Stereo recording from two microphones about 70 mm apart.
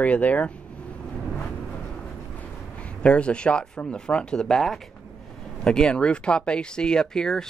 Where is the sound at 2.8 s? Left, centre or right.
Centre.